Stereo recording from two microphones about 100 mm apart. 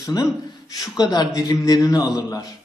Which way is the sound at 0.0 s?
35° left (ahead or behind).